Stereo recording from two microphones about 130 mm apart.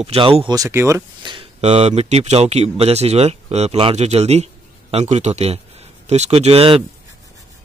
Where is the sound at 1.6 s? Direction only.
60° right (ahead or behind).